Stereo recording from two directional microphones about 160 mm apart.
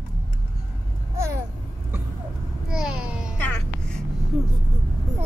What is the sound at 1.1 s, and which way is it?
Babbling, 15° right (ahead or behind).